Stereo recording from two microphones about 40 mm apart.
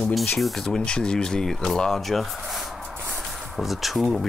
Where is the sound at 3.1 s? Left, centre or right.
Centre.